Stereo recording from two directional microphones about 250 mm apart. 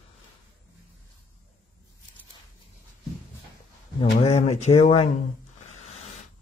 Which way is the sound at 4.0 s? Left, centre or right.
Left.